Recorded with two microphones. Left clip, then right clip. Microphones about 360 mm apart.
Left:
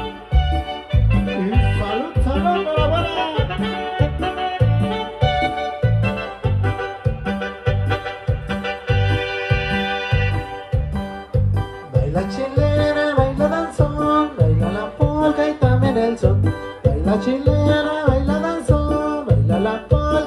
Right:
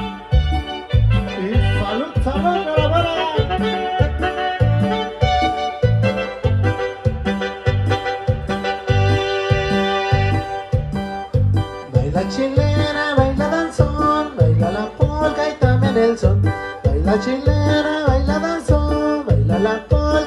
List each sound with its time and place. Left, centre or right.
2.5 s music: right
11.9 s music: centre
15.3 s music: right